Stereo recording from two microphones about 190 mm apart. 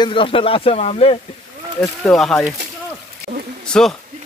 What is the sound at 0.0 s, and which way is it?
Speech, 25° left (ahead or behind).